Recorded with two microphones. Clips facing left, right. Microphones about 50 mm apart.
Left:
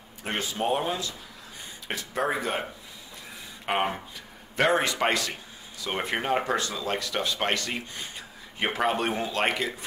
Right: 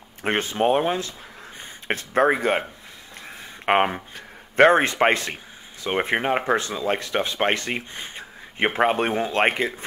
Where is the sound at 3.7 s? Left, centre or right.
Right.